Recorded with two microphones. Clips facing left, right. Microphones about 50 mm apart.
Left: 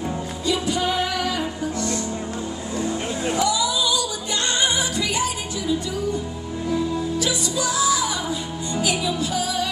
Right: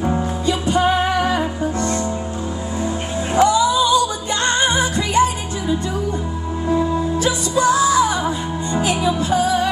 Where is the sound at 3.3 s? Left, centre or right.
Right.